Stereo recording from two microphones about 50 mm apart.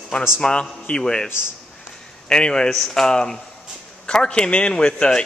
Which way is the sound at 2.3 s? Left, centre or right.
Centre.